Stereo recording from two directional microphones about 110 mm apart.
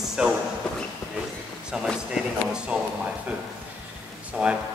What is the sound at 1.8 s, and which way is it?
Speech, 5° right (ahead or behind).